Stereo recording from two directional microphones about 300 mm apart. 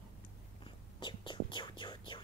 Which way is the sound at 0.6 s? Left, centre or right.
Centre.